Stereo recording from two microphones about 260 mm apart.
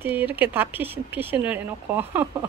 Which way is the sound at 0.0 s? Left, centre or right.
Centre.